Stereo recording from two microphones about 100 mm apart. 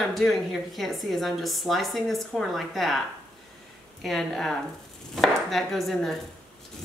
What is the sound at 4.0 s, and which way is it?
A woman's voice, 5° left (ahead or behind).